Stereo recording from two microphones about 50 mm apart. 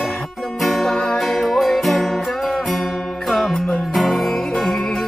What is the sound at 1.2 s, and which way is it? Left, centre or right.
Music, centre.